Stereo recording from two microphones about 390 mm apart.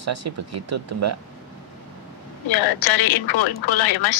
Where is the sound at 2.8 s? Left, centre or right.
Left.